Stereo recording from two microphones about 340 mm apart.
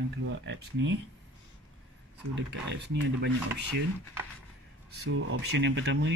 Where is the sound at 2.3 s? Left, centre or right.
Right.